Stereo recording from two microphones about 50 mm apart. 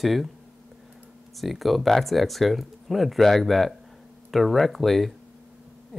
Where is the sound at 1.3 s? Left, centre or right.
Centre.